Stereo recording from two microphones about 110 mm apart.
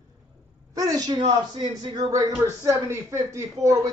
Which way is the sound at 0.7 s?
35° right (ahead or behind).